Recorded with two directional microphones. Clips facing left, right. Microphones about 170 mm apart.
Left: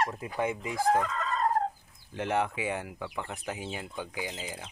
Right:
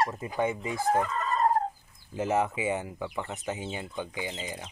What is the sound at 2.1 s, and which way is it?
Speech, 5° right (ahead or behind).